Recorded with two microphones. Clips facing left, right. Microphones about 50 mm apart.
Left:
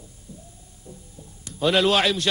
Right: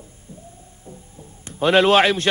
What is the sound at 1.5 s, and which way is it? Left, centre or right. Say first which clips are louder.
Speech: right 5 dB; right.